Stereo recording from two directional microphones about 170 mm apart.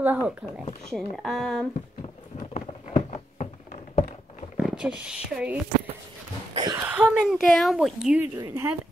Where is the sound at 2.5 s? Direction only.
40° left (ahead or behind).